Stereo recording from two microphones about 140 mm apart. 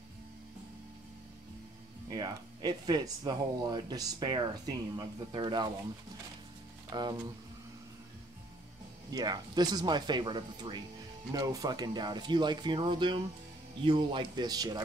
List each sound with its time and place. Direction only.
2.0 s speech: 30° right (ahead or behind)
6.9 s speech: 30° right (ahead or behind)
9.1 s speech: 30° right (ahead or behind)